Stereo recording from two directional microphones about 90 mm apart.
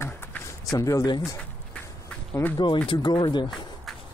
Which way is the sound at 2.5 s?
60° left (ahead or behind).